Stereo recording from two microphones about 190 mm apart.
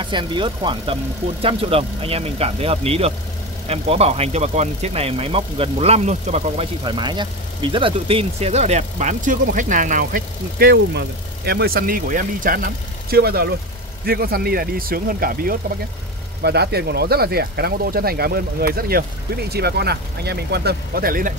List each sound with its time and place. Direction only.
0.0 s speech: 25° right (ahead or behind); by 21.3 s 50° right (ahead or behind)